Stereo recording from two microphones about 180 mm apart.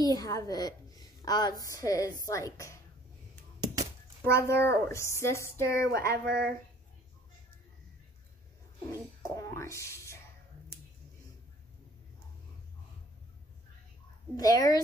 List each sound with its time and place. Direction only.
0.0 s a woman's voice: 20° left (ahead or behind)
3.6 s a sound: 20° right (ahead or behind)
4.2 s speech: 15° left (ahead or behind)
6.1 s speech: 65° right (ahead or behind)
9.2 s speech: 15° left (ahead or behind)
14.3 s speech: 20° left (ahead or behind)